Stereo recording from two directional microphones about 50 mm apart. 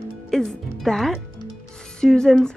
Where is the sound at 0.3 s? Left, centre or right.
Centre.